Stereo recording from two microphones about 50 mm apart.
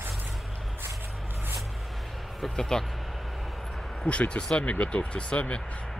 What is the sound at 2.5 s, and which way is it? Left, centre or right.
Speech, centre.